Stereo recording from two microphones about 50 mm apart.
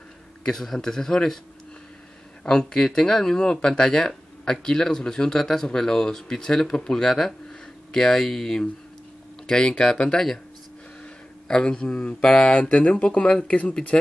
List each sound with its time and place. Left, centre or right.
0.5 s speech: centre
2.4 s speech: centre
11.4 s speech: centre